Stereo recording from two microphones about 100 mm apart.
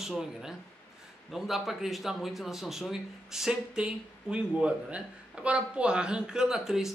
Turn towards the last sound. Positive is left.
turn(degrees=-5)  # may be behind; listen again after turning